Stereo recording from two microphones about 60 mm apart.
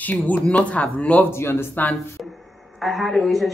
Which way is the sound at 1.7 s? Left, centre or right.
Left.